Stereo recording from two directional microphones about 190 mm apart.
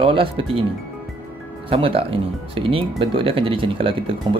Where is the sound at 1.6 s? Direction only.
30° right (ahead or behind).